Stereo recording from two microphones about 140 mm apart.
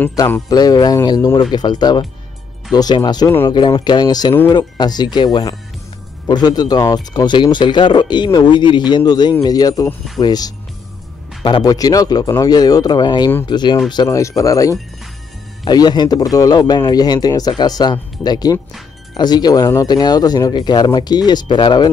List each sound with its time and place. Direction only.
0.5 s speech: 30° left (ahead or behind)